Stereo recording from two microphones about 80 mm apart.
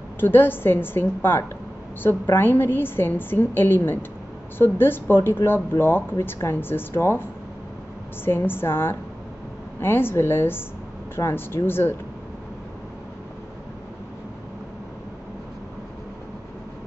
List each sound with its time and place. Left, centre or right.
0.2 s speech: left
8.3 s speech: left